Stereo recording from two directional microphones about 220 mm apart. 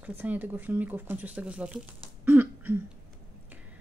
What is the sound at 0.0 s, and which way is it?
Speech, 10° right (ahead or behind).